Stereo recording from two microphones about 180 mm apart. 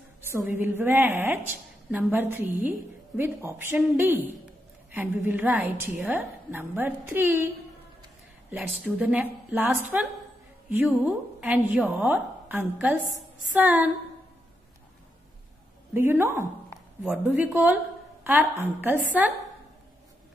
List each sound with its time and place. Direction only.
0.2 s a man's voice: 10° right (ahead or behind)
8.5 s a man's voice: 10° right (ahead or behind)
11.1 s a man's voice: 10° right (ahead or behind)
15.9 s a man's voice: 10° right (ahead or behind)